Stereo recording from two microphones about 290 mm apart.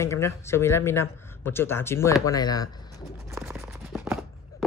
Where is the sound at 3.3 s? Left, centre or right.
Centre.